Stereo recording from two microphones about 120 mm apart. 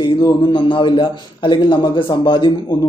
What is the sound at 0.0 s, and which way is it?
A man's voice, 45° left (ahead or behind).